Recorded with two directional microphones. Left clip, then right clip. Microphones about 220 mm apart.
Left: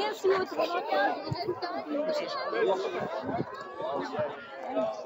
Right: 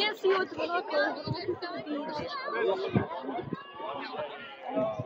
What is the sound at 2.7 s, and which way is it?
Speech, 55° left (ahead or behind).